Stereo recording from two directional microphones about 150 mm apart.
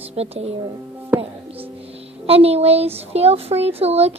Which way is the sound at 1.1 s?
10° right (ahead or behind).